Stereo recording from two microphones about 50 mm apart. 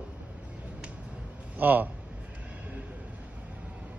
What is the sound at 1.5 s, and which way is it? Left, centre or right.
Speech, right.